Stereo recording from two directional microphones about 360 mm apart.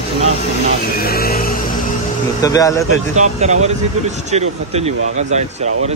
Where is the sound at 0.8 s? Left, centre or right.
Left.